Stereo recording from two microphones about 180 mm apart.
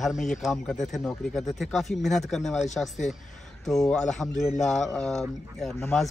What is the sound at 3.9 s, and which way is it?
Speech, centre (ahead or behind).